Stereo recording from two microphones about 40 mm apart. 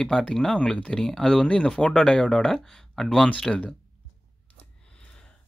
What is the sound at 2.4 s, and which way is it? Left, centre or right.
Speech, centre.